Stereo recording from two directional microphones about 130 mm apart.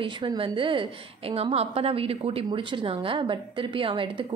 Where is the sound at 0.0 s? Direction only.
35° right (ahead or behind).